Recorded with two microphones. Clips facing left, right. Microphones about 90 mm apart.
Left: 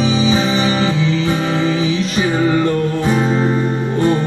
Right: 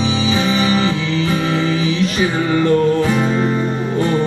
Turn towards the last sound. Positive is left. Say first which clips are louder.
# even
turn(degrees=25)  # may be behind; listen again after turning